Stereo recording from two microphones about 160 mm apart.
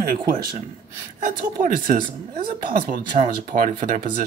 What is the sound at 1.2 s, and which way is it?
Speech, 55° right (ahead or behind).